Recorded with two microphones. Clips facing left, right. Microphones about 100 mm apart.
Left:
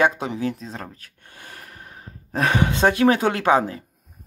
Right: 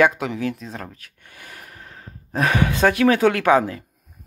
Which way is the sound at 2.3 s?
30° left (ahead or behind).